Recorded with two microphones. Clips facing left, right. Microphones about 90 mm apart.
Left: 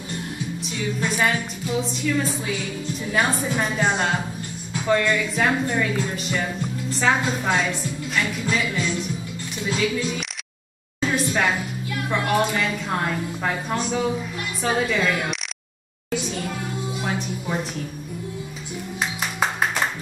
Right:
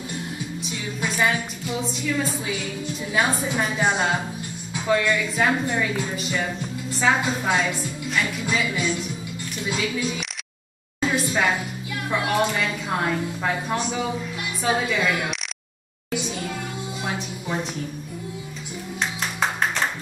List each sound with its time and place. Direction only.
0.6 s speech: centre (ahead or behind)
11.0 s a sound: centre (ahead or behind)
14.6 s speech: centre (ahead or behind)
16.2 s music: centre (ahead or behind)
18.9 s music: 5° left (ahead or behind)